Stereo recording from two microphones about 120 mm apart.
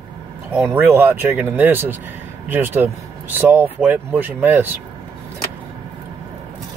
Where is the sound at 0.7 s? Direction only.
20° right (ahead or behind).